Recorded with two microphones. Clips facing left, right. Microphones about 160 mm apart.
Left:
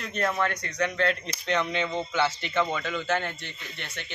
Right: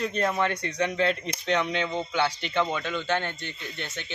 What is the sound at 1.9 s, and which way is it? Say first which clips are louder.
Speech: even; 10° right (ahead or behind).